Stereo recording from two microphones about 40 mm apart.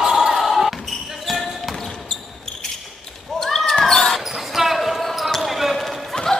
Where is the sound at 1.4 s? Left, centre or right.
Centre.